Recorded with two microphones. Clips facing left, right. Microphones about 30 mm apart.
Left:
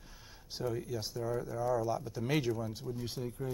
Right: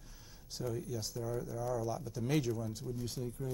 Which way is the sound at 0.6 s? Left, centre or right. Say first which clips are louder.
Left 3 dB; left.